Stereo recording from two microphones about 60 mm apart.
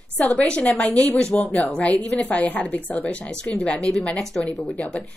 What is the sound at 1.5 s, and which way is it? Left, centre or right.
A woman's voice, left.